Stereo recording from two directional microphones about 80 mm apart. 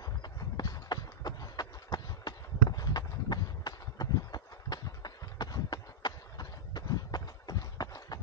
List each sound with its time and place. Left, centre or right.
0.0 s clip-clop: left